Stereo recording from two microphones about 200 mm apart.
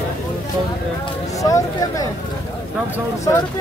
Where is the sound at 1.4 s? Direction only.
15° left (ahead or behind).